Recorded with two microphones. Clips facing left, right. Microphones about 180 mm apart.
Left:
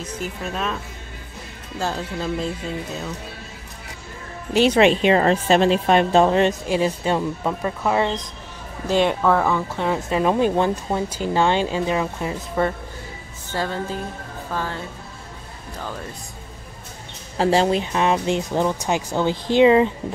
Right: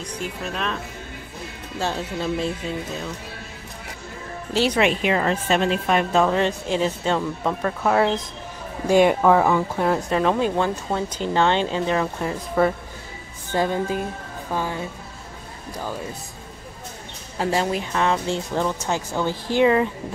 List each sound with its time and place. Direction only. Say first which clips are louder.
0.2 s speech: left 1 dB; 5° left (ahead or behind)
1.8 s speech: even; centre (ahead or behind)
4.6 s speech: left 5 dB; 25° left (ahead or behind)
6.7 s speech: left 1 dB; 10° left (ahead or behind)
7.8 s speech: right 2 dB; centre (ahead or behind)
9.8 s speech: left 1 dB; centre (ahead or behind)
10.2 s speech: left 5 dB; 15° left (ahead or behind)
12.6 s speech: right 2 dB; 5° right (ahead or behind)
13.5 s speech: right 4 dB; 15° right (ahead or behind)
17.4 s speech: left 5 dB; 30° left (ahead or behind)